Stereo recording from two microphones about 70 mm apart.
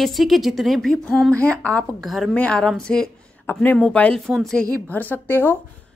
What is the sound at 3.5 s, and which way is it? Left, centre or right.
Speech, left.